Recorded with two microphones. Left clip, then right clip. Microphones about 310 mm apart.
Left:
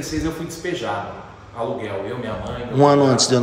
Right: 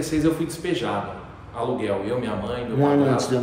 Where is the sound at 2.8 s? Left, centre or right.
Centre.